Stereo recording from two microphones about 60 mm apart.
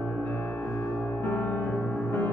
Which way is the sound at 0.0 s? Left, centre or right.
Left.